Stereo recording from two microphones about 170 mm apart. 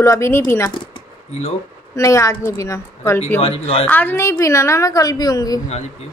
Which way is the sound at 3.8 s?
10° left (ahead or behind).